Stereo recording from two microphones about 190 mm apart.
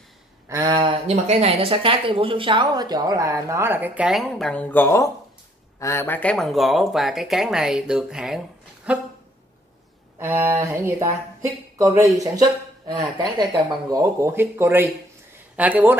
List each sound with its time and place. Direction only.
0.5 s speech: 20° right (ahead or behind)
10.1 s speech: 15° right (ahead or behind)